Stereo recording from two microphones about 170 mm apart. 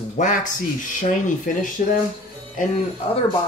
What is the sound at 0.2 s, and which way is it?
Speech, 45° left (ahead or behind).